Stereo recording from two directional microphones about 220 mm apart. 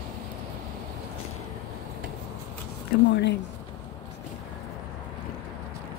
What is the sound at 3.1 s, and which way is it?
Speech, 50° left (ahead or behind).